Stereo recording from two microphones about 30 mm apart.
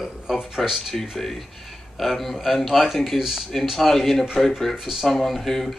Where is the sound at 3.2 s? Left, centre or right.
Centre.